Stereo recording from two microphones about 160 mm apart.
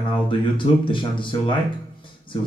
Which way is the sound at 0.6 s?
30° left (ahead or behind).